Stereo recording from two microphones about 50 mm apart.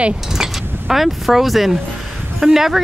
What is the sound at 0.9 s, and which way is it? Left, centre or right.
Speech, centre.